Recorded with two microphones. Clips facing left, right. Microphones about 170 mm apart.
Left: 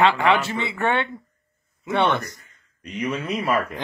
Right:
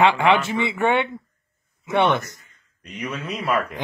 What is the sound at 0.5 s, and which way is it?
Speech, 15° right (ahead or behind).